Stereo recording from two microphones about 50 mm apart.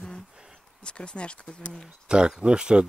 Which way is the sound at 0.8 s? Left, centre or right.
Centre.